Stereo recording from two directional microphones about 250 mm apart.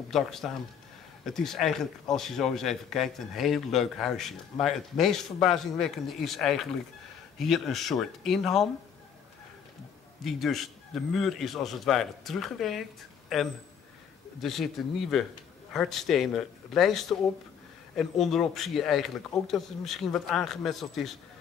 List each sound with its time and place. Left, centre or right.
0.1 s speech: centre
10.2 s speech: centre